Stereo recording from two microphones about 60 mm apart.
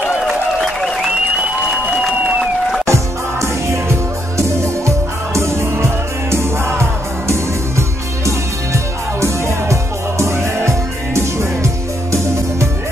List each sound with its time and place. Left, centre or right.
0.7 s applause: centre
2.8 s music: right